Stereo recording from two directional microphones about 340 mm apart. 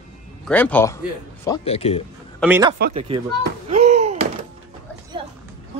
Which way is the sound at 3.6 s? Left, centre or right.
Centre.